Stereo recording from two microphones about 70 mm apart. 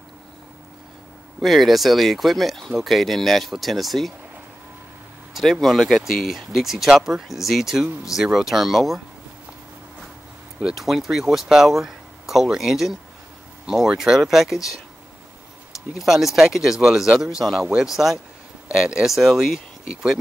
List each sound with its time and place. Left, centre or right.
1.4 s speech: centre
5.3 s speech: centre
10.8 s speech: centre
15.9 s speech: centre